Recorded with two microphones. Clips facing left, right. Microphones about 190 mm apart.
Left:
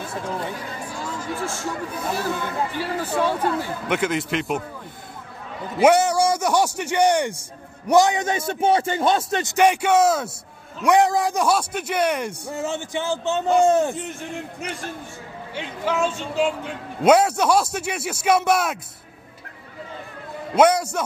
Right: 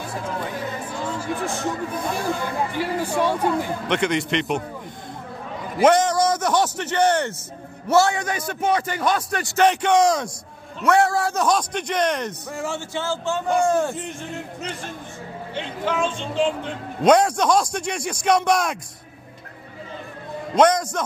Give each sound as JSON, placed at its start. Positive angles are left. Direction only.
{"t": 1.2, "sound": "a man's voice", "side_deg": -15}
{"t": 2.8, "sound": "speech", "side_deg": -10}
{"t": 3.9, "sound": "a man's voice", "side_deg": 5}
{"t": 5.8, "sound": "a man's voice", "side_deg": 10}
{"t": 9.6, "sound": "a man's voice", "side_deg": 10}
{"t": 10.8, "sound": "a man's voice", "side_deg": 15}
{"t": 15.5, "sound": "a man's voice", "side_deg": 10}
{"t": 20.5, "sound": "a man's voice", "side_deg": 10}